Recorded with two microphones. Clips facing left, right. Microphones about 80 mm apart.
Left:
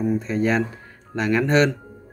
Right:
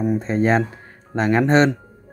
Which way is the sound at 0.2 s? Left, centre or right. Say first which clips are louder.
Right 3 dB; right.